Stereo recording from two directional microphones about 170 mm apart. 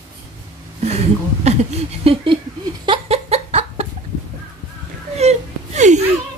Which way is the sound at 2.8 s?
35° right (ahead or behind).